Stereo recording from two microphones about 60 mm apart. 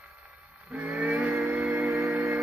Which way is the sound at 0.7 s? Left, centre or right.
Right.